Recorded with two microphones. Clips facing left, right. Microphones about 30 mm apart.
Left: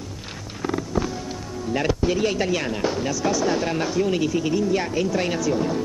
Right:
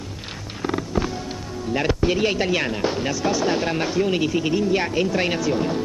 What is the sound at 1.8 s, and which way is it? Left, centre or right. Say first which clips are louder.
Artillery fire: right 1 dB; right.